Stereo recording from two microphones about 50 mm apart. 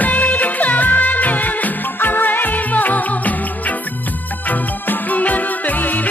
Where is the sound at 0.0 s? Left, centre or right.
Left.